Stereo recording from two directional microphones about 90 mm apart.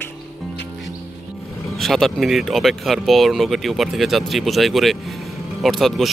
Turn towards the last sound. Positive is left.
turn(degrees=0)  # may be behind; listen again after turning